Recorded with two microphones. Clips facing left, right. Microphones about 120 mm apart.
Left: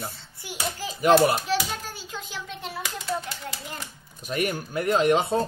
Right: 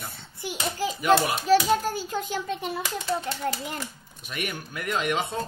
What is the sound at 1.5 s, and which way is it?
A child's voice, 45° right (ahead or behind).